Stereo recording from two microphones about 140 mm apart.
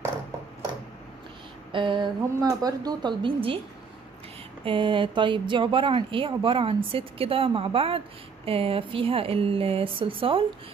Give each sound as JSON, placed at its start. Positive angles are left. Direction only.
{"t": 1.7, "sound": "speech", "side_deg": -35}
{"t": 4.6, "sound": "speech", "side_deg": -35}